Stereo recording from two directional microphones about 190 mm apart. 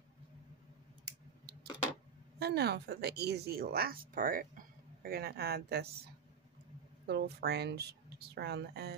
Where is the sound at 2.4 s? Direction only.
60° right (ahead or behind).